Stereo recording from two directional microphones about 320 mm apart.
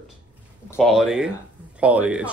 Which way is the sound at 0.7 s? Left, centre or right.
Centre.